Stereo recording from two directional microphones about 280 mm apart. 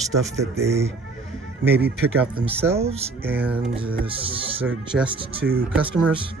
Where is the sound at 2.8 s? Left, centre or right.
Right.